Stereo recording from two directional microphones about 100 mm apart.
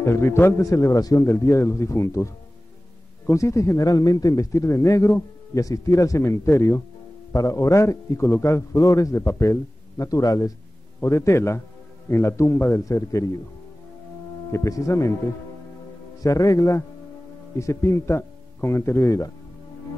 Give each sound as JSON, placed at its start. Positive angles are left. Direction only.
{"t": 0.0, "sound": "a man's voice", "side_deg": 25}
{"t": 14.5, "sound": "a man's voice", "side_deg": 30}
{"t": 16.2, "sound": "a man's voice", "side_deg": 35}